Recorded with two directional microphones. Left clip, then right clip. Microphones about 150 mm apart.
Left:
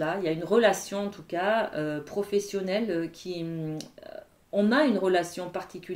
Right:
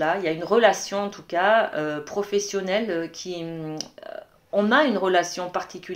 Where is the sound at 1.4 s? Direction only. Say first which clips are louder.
Right 7 dB; 35° left (ahead or behind).